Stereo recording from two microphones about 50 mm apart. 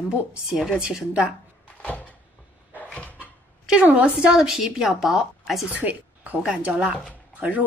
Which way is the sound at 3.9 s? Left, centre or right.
Right.